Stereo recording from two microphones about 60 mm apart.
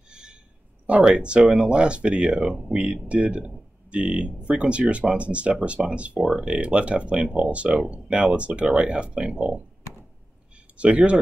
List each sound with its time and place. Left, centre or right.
0.1 s a sound: centre
1.0 s speech: centre
10.8 s speech: centre